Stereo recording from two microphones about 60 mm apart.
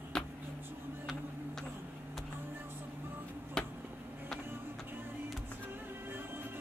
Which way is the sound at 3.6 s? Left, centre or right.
Centre.